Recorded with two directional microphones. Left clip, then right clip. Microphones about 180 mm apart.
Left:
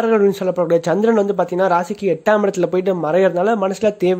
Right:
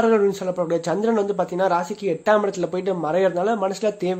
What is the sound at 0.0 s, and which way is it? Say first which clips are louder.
Speech: left 3 dB; 45° left (ahead or behind).